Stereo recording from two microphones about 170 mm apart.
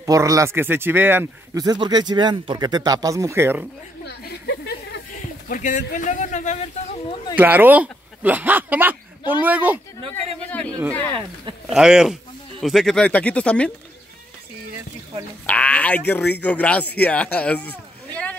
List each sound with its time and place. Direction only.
0.0 s speech: 20° right (ahead or behind)
4.0 s a sound: 75° left (ahead or behind)
5.5 s speech: 50° left (ahead or behind)
7.3 s speech: 10° right (ahead or behind)
10.4 s speech: 10° left (ahead or behind)
11.6 s speech: 5° right (ahead or behind)
15.4 s speech: 10° left (ahead or behind)